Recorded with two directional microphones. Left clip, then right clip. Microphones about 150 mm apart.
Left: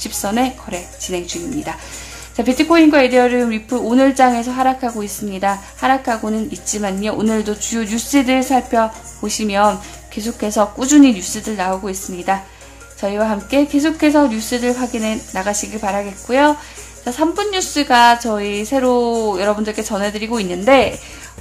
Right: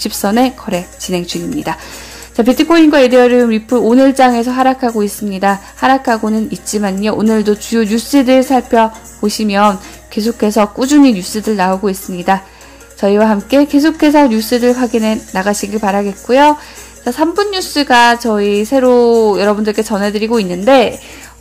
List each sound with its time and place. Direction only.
0.0 s a woman's voice: 35° right (ahead or behind)